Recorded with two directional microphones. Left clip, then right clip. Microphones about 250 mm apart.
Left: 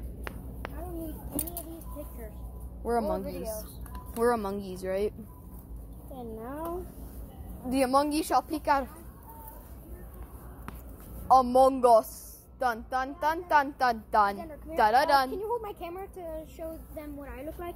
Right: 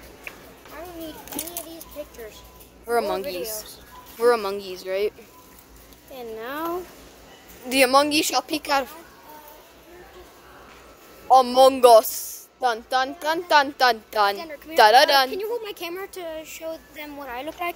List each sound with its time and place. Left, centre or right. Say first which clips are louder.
2.9 s a woman's voice: right 6 dB; centre
7.7 s speech: right 8 dB; right
11.2 s a woman's voice: right 6 dB; right
15.6 s a woman's voice: right 6 dB; right